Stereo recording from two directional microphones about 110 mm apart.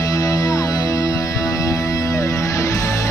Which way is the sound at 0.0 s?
30° left (ahead or behind).